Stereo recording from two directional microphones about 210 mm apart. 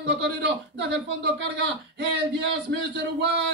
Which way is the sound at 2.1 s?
55° right (ahead or behind).